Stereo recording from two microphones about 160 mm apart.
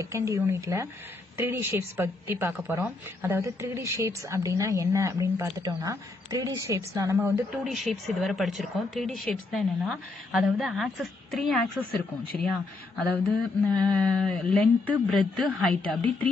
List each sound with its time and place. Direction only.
0.0 s speech: 20° right (ahead or behind)
7.6 s speech: centre (ahead or behind)
12.9 s speech: centre (ahead or behind)